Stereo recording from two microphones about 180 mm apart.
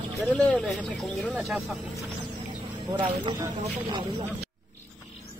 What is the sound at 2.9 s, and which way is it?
Speech, 25° right (ahead or behind).